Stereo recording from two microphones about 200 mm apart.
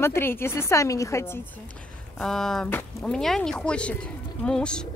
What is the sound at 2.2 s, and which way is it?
Speech, centre (ahead or behind).